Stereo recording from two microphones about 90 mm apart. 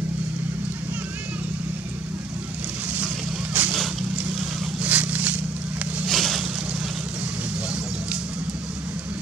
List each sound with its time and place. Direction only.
3.6 s boat: 15° right (ahead or behind)
4.8 s a sound: 15° right (ahead or behind)
6.0 s vehicle: centre (ahead or behind)